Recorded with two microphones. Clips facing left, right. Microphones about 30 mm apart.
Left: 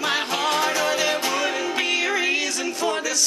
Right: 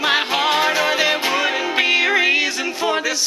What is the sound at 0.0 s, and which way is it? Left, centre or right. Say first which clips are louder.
Music: right 5 dB; right.